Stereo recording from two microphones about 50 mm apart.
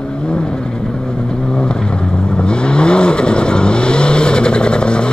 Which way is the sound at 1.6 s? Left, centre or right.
Centre.